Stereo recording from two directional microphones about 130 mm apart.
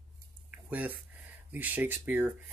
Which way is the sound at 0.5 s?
10° right (ahead or behind).